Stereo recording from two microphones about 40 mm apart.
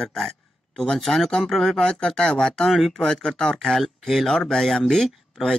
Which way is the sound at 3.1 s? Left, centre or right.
Left.